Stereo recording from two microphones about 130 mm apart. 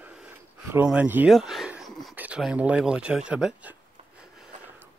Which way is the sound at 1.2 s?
Centre (ahead or behind).